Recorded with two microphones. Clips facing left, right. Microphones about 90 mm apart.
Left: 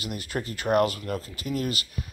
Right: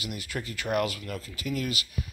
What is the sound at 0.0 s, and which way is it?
Speech, 40° left (ahead or behind).